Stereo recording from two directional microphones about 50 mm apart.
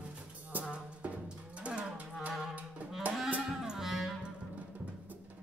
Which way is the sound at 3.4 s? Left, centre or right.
Centre.